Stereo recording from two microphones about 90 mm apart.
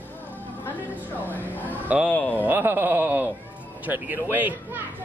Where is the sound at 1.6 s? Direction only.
15° right (ahead or behind).